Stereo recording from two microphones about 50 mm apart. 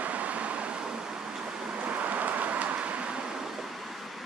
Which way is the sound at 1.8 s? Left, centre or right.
Right.